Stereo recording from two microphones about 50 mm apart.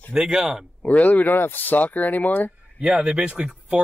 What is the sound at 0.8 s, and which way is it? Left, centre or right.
Speech, left.